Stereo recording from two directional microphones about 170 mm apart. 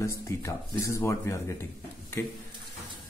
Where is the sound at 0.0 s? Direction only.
20° left (ahead or behind).